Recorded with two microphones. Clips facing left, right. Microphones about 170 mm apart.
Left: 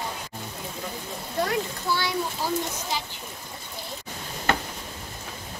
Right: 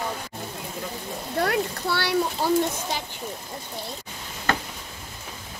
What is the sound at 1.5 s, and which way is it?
Speech, 65° right (ahead or behind).